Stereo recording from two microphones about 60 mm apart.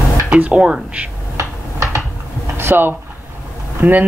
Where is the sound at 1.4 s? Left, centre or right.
Right.